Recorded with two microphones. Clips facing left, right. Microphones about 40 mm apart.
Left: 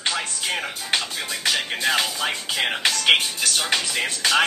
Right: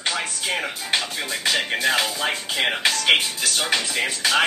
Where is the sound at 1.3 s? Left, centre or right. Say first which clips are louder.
Right 2 dB; right.